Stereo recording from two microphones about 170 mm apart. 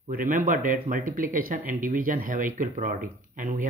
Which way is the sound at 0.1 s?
50° right (ahead or behind).